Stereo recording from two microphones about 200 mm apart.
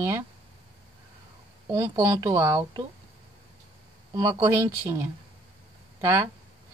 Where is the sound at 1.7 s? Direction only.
20° right (ahead or behind).